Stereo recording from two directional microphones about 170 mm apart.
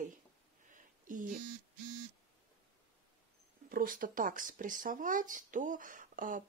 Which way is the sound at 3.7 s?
55° right (ahead or behind).